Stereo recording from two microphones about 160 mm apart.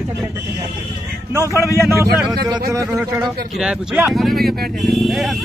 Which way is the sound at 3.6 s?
5° right (ahead or behind).